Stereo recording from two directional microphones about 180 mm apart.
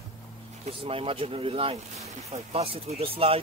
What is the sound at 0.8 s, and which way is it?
Speech, 30° right (ahead or behind).